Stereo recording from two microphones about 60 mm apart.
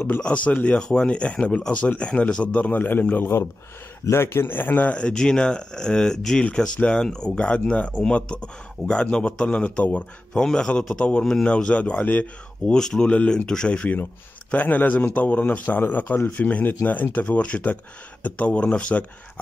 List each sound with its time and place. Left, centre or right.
0.0 s speech: left
4.0 s speech: left
4.9 s speech: centre
12.7 s speech: centre